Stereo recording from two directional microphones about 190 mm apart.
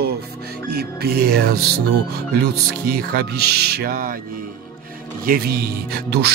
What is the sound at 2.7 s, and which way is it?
Speech, 55° right (ahead or behind).